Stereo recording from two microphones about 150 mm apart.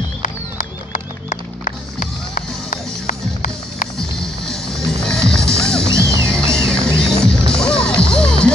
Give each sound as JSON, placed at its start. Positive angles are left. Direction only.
{"t": 0.2, "sound": "music", "side_deg": 60}
{"t": 4.0, "sound": "music", "side_deg": 5}